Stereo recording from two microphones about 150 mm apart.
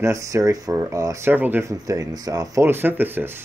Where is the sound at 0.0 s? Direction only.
20° right (ahead or behind).